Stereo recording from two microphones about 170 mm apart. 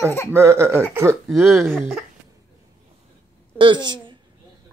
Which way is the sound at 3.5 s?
30° right (ahead or behind).